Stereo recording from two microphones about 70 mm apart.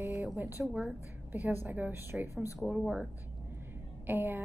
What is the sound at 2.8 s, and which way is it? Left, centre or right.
Speech, centre.